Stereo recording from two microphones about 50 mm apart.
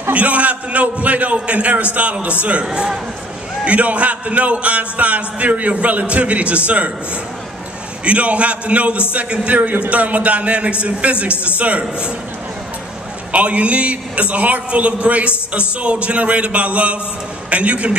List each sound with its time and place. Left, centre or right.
0.1 s a man's voice: right
8.0 s a man's voice: right
13.3 s a man's voice: right